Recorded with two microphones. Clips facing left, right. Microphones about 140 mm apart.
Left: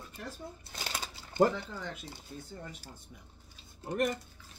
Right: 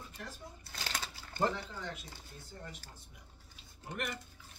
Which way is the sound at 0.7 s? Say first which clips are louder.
Right 2 dB; 15° left (ahead or behind).